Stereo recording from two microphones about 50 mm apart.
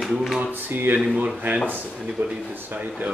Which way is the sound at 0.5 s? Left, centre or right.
Right.